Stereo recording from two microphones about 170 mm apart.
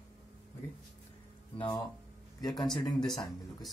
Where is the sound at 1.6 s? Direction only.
25° left (ahead or behind).